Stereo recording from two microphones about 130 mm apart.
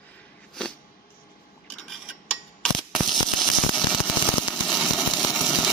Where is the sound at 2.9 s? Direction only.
Centre (ahead or behind).